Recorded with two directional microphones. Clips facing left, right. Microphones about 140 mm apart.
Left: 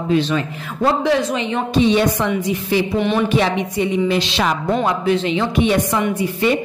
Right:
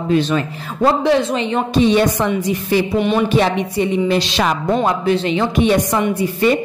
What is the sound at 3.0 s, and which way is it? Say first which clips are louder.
Speech: right 2 dB; 15° right (ahead or behind).